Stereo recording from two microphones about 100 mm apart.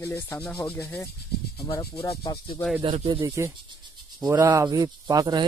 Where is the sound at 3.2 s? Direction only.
25° right (ahead or behind).